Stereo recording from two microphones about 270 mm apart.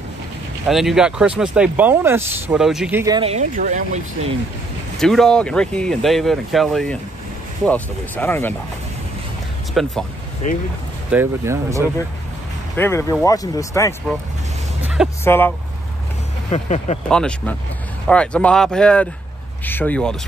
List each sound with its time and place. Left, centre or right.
0.7 s speech: centre; by 4.0 s right
4.9 s speech: centre
9.8 s speech: centre
10.4 s speech: left
11.1 s speech: centre
12.7 s speech: centre
14.8 s vehicle: centre
15.2 s speech: centre
16.4 s speech: left
17.1 s speech: centre